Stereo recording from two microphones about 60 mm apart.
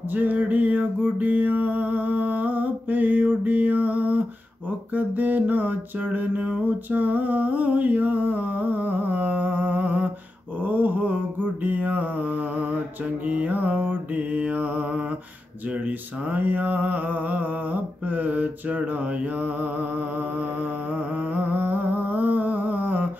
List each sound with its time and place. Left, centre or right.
0.1 s mantra: right